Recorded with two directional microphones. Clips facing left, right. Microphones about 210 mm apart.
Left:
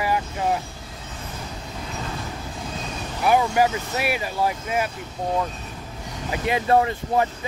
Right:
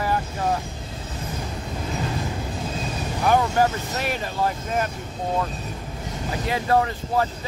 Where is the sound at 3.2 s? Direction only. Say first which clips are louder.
Left 1 dB; 10° left (ahead or behind).